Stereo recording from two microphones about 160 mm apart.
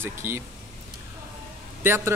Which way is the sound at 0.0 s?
15° right (ahead or behind).